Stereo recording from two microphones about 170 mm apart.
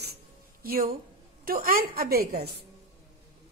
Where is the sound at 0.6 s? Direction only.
60° right (ahead or behind).